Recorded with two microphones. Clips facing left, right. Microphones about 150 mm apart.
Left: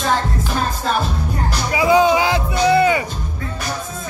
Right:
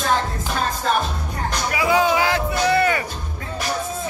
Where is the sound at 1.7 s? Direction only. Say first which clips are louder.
Left 5 dB; 25° left (ahead or behind).